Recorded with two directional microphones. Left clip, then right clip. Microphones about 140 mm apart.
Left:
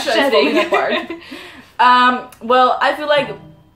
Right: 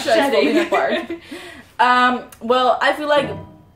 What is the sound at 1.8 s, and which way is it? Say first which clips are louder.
A woman's voice: left 3 dB; 20° right (ahead or behind).